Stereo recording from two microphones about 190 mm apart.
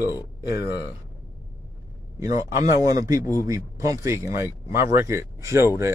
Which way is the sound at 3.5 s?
15° right (ahead or behind).